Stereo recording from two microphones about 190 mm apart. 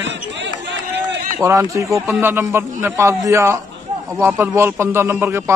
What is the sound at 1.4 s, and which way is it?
A man's voice, 15° right (ahead or behind).